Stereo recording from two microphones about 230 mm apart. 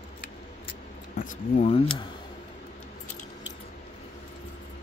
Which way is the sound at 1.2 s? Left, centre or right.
Left.